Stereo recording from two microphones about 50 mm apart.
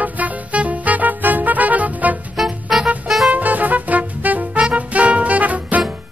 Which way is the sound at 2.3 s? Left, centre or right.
Centre.